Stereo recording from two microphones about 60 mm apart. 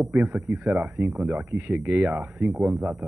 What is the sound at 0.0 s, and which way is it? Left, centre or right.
A man's voice, right.